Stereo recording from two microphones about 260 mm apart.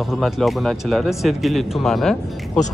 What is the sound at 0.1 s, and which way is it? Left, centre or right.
Speech, centre.